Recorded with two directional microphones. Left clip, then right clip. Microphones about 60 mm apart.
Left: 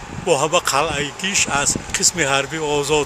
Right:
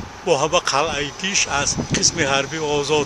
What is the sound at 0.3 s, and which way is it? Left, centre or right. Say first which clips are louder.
Speech: left 1 dB; centre.